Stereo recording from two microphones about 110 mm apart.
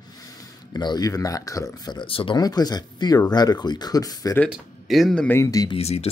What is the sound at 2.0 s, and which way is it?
Speech, 55° left (ahead or behind).